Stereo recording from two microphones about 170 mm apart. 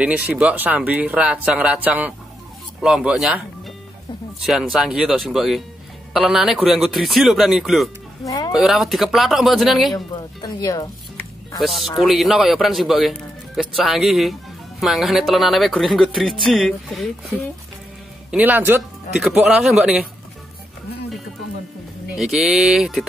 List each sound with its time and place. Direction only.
0.3 s speech: 10° right (ahead or behind)
4.5 s speech: centre (ahead or behind)
8.3 s cat: 20° left (ahead or behind)
8.5 s speech: centre (ahead or behind)
9.9 s speech: 25° left (ahead or behind)
11.6 s speech: centre (ahead or behind)
18.3 s speech: 10° right (ahead or behind)
22.1 s speech: centre (ahead or behind)